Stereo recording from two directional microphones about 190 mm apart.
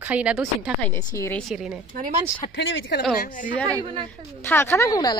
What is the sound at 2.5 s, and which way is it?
Speech, 70° left (ahead or behind).